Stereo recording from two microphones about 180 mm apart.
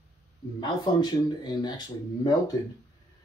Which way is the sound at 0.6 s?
25° left (ahead or behind).